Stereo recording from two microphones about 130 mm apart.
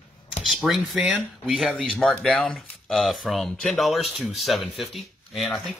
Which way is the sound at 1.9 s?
5° left (ahead or behind).